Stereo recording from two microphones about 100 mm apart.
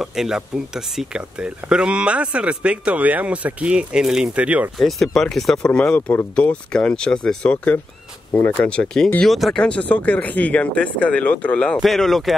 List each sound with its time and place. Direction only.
0.0 s speech: 5° right (ahead or behind)
4.7 s speech: centre (ahead or behind)
8.3 s speech: 20° left (ahead or behind)
8.6 s speech: 10° left (ahead or behind)